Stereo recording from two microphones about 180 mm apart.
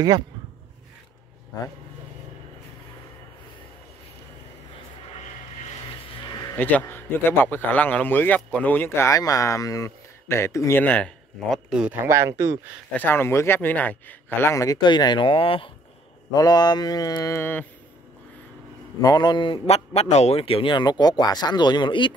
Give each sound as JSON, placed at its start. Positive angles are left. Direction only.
{"t": 5.2, "sound": "vehicle", "side_deg": 40}
{"t": 6.2, "sound": "a sound", "side_deg": 20}
{"t": 6.5, "sound": "a man's voice", "side_deg": 10}
{"t": 12.9, "sound": "a man's voice", "side_deg": 10}
{"t": 18.9, "sound": "a man's voice", "side_deg": 20}